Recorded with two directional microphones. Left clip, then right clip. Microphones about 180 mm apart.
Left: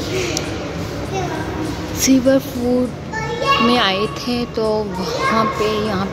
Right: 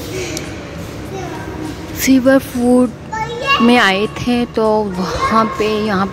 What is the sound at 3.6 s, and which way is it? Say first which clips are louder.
A child's voice: right 4 dB; 20° right (ahead or behind).